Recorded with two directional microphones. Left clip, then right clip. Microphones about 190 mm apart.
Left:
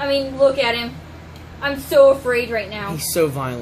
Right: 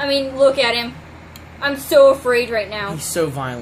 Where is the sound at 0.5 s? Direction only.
15° right (ahead or behind).